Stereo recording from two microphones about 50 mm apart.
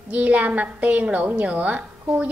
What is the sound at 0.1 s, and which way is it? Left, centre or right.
A woman's voice, right.